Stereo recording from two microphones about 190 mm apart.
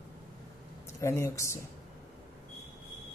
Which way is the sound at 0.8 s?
15° left (ahead or behind).